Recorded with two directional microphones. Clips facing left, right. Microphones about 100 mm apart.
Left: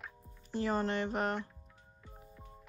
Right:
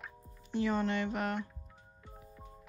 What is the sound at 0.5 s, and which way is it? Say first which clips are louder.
Speech: right 1 dB; 40° left (ahead or behind).